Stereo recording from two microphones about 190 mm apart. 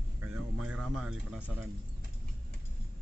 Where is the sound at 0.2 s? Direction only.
10° right (ahead or behind).